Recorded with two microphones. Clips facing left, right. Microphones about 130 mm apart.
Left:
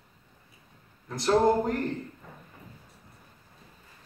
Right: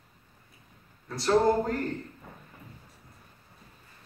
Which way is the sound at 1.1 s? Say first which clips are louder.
Even; 20° left (ahead or behind).